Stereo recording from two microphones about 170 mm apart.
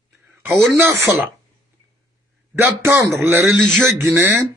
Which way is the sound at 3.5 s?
5° left (ahead or behind).